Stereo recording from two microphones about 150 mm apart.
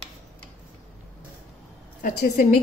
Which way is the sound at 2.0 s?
70° left (ahead or behind).